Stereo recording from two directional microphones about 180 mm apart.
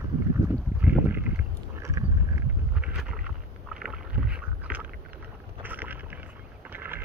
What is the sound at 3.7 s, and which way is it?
Rowboat, 5° right (ahead or behind).